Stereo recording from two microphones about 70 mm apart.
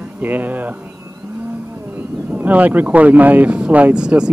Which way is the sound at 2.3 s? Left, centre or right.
Right.